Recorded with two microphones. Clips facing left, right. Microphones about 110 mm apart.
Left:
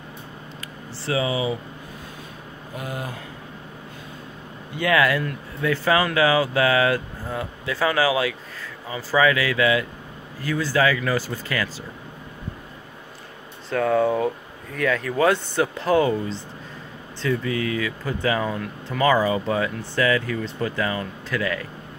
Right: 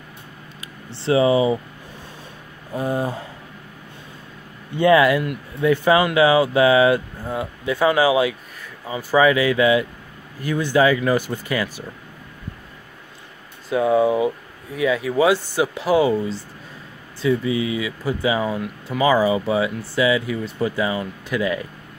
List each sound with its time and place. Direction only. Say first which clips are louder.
1.0 s speech: right 7 dB; 30° right (ahead or behind)
2.7 s speech: right 9 dB; 30° right (ahead or behind)
4.7 s speech: right 6 dB; 25° right (ahead or behind)
13.7 s speech: right 3 dB; 10° right (ahead or behind)